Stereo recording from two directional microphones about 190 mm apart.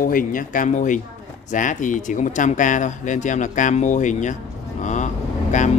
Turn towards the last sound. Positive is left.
turn(degrees=40)  # may be behind; listen again after turning